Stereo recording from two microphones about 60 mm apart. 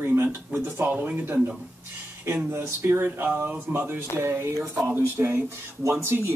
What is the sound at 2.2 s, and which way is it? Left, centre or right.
Speech, right.